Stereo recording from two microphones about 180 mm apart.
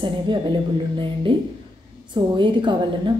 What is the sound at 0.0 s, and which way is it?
A woman's voice, 25° right (ahead or behind).